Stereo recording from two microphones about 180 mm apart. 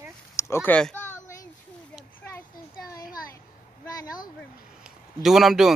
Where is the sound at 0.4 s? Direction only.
15° left (ahead or behind).